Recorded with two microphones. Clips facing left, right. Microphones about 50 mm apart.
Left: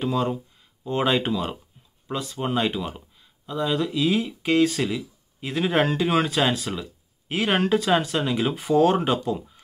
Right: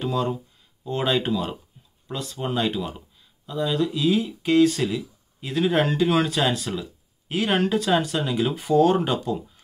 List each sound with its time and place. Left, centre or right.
0.0 s speech: left